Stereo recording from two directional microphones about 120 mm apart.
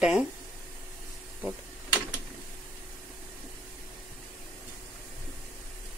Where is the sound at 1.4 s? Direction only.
10° right (ahead or behind).